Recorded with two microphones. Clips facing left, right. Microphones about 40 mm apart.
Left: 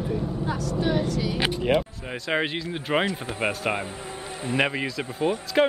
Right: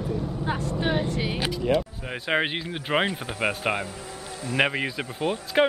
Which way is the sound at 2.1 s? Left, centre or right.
Centre.